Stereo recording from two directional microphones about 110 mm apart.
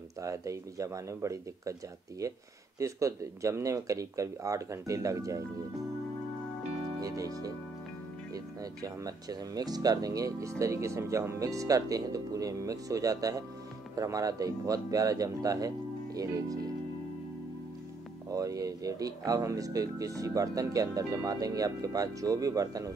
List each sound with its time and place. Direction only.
0.2 s speech: 30° right (ahead or behind)
7.0 s speech: 30° right (ahead or behind)
8.8 s speech: 35° right (ahead or behind)
18.3 s speech: 30° right (ahead or behind)